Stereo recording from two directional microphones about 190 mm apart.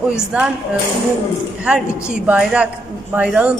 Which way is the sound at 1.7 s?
5° right (ahead or behind).